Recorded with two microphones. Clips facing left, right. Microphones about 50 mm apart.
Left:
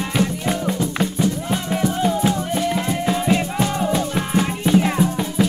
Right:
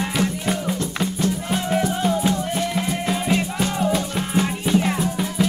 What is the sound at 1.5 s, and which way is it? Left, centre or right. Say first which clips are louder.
Music: even; centre.